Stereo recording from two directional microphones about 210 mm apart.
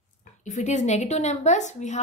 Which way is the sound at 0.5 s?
35° left (ahead or behind).